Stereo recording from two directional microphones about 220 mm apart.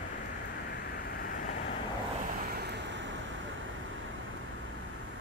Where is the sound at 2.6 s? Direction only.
55° right (ahead or behind).